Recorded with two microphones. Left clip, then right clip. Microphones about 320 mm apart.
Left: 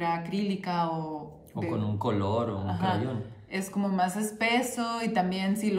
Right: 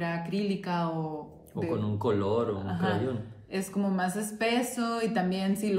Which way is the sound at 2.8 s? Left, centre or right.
Centre.